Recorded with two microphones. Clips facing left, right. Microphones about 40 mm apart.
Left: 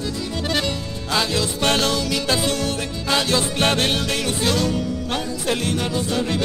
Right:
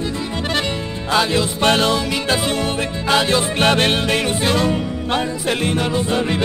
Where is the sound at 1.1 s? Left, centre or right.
Right.